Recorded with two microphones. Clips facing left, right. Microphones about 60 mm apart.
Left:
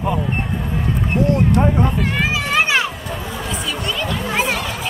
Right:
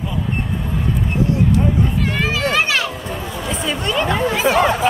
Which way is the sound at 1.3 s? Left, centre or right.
Left.